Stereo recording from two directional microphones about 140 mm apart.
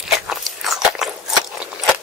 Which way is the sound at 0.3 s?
Centre (ahead or behind).